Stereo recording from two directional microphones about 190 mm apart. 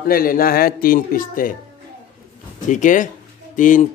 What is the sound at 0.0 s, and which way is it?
Speech, 50° left (ahead or behind).